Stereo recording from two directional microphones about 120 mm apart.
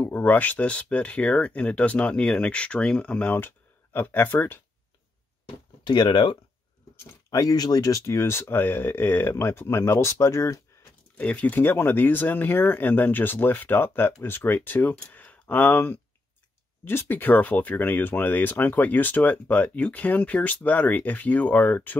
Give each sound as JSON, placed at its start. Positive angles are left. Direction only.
{"t": 0.0, "sound": "speech", "side_deg": 15}
{"t": 5.9, "sound": "speech", "side_deg": 35}
{"t": 11.1, "sound": "speech", "side_deg": 10}